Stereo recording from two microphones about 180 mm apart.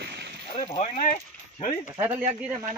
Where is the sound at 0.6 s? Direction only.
30° left (ahead or behind).